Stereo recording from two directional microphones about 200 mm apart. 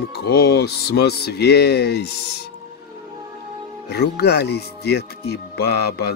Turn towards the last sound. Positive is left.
turn(degrees=55)  # may be behind; listen again after turning